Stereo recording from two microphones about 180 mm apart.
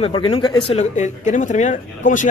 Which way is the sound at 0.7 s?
40° left (ahead or behind).